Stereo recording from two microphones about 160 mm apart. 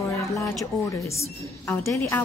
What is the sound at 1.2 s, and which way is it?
Speech, 15° left (ahead or behind).